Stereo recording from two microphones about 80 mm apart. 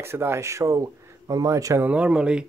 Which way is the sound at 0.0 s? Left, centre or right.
Right.